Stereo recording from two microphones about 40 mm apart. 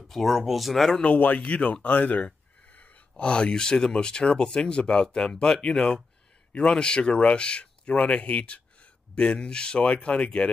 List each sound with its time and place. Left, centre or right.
0.1 s speech: centre
1.0 s speech: left
2.7 s speech: left
9.8 s speech: left